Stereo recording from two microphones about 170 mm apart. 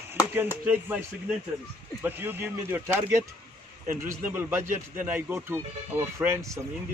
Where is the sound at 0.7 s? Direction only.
10° right (ahead or behind).